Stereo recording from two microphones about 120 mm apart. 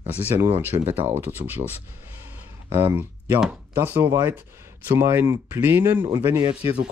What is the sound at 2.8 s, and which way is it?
Speech, 15° right (ahead or behind).